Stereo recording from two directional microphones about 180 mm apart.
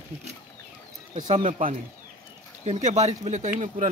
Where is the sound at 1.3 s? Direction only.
45° right (ahead or behind).